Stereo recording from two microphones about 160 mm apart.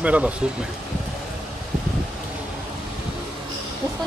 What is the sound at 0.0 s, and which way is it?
Speech, 10° right (ahead or behind).